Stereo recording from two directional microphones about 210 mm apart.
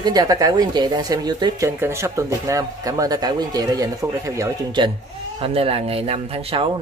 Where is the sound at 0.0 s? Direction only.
15° right (ahead or behind).